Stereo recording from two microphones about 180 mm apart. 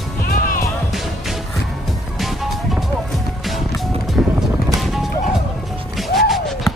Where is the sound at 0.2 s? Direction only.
55° left (ahead or behind).